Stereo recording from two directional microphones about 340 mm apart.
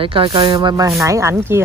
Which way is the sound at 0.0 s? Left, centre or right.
Centre.